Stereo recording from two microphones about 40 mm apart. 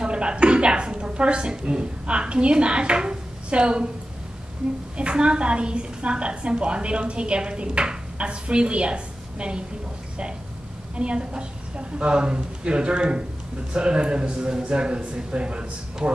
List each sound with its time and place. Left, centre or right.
0.0 s a woman's voice: right
4.9 s a woman's voice: right
11.0 s a woman's voice: right